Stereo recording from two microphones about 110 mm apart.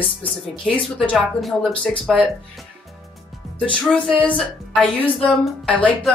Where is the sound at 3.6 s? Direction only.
5° left (ahead or behind).